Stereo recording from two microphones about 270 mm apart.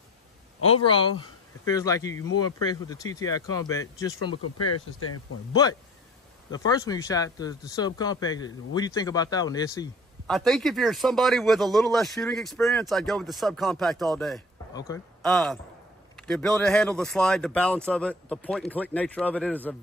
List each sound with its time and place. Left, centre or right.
0.7 s speech: centre
4.4 s speech: left
5.5 s speech: centre
10.2 s speech: centre
14.7 s a man's voice: centre
15.2 s speech: centre